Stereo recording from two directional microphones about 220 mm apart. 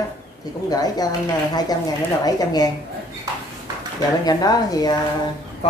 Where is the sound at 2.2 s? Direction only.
15° left (ahead or behind).